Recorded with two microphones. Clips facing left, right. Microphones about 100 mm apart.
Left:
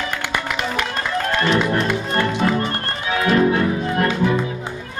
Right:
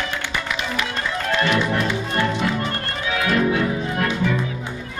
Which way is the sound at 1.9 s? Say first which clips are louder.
Left 2 dB; 50° left (ahead or behind).